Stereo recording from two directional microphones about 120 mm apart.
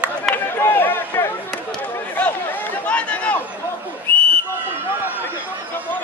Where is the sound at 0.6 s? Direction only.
20° left (ahead or behind).